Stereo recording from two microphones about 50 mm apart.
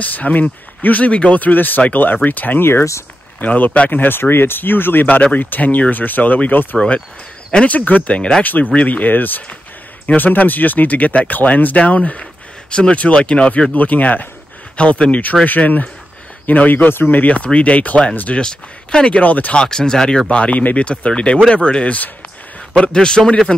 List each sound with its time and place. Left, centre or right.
0.0 s speech: left
4.2 s speech: left
5.2 s speech: left
13.7 s speech: left
18.4 s speech: centre; by 19.5 s left
19.5 s speech: centre
20.2 s speech: left
22.8 s speech: centre